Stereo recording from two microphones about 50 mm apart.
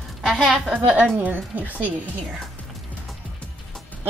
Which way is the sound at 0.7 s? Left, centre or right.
Right.